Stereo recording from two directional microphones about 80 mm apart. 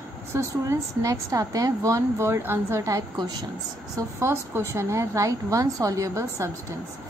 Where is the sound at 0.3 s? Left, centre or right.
Right.